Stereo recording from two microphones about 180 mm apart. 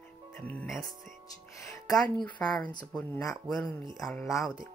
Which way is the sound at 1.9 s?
5° left (ahead or behind).